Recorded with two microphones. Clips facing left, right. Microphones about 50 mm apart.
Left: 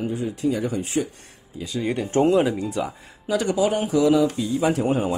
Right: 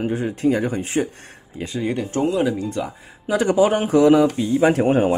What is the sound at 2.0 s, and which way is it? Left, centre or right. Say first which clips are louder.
Speech: left 5 dB; left.